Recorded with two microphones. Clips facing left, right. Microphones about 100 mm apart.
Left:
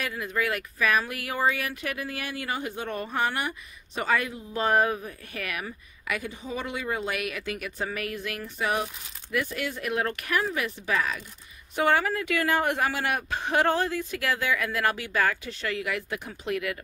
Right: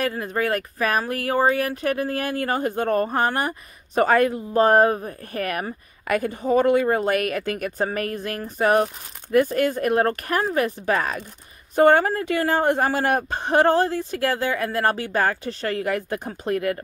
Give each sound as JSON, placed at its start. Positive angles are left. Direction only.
{"t": 0.0, "sound": "speech", "side_deg": -40}